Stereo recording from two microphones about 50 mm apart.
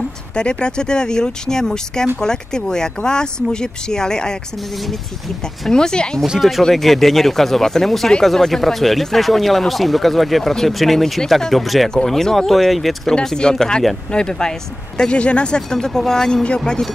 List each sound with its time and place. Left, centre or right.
0.3 s speech: centre
5.7 s speech: centre
6.7 s speech: centre
11.9 s speech: centre
13.1 s speech: centre